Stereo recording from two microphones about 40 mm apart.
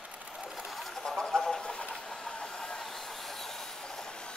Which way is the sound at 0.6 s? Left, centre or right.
Centre.